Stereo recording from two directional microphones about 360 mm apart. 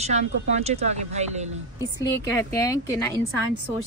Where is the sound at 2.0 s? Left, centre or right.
Centre.